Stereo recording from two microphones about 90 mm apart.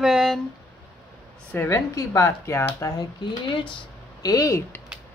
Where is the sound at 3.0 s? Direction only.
65° left (ahead or behind).